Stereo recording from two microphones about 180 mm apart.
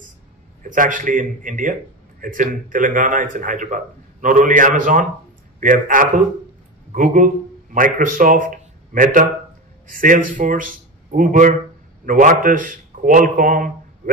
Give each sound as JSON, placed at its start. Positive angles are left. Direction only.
{"t": 0.7, "sound": "a man's voice", "side_deg": -45}